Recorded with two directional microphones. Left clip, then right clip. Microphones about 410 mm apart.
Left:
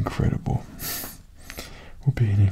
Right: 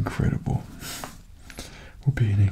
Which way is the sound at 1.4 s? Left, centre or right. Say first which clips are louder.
Left 2 dB; centre.